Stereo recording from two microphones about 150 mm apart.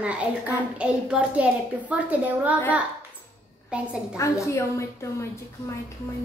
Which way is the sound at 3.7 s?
10° right (ahead or behind).